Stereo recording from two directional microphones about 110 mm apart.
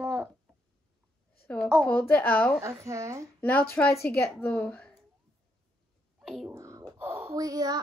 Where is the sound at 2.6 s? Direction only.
25° right (ahead or behind).